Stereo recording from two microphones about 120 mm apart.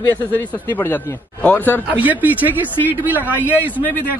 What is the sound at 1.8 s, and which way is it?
Speech, 15° right (ahead or behind).